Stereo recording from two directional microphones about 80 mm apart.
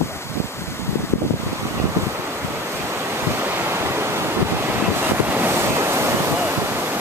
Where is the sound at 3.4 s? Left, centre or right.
Right.